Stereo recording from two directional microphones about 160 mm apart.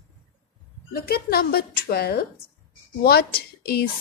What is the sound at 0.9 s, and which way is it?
A woman's voice, 70° left (ahead or behind).